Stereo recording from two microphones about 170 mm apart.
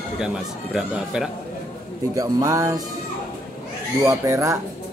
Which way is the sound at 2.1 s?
20° right (ahead or behind).